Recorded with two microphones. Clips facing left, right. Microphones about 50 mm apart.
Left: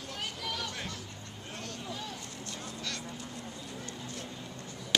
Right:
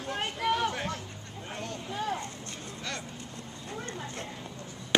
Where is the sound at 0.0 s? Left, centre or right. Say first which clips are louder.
Right 8 dB; right.